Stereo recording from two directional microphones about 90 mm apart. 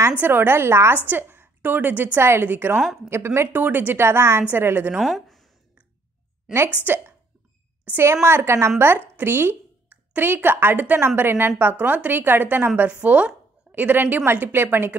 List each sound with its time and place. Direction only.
0.2 s a woman's voice: 25° right (ahead or behind)
5.0 s a sound: centre (ahead or behind)
6.9 s a woman's voice: 20° right (ahead or behind)